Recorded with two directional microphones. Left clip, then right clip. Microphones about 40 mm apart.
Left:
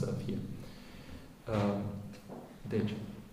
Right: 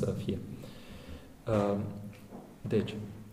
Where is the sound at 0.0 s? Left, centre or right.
Right.